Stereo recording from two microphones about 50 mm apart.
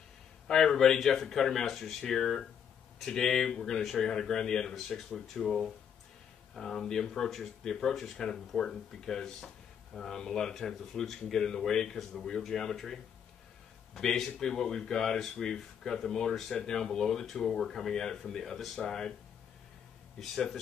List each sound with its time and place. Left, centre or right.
0.5 s speech: centre
20.2 s speech: centre